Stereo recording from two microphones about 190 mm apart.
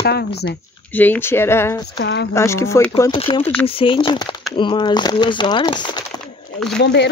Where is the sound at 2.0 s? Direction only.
60° left (ahead or behind).